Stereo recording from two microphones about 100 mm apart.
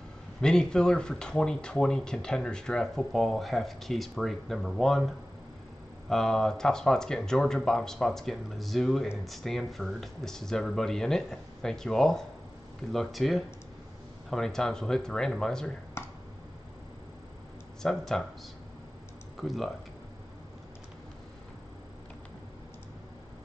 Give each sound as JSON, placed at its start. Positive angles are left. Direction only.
{"t": 0.4, "sound": "speech", "side_deg": 5}
{"t": 16.0, "sound": "finger snapping", "side_deg": 25}
{"t": 17.8, "sound": "speech", "side_deg": 5}
{"t": 19.3, "sound": "speech", "side_deg": 0}